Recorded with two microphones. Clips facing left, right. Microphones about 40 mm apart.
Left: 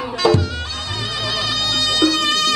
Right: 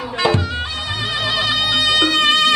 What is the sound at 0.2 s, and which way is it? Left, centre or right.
Bagpipes, right.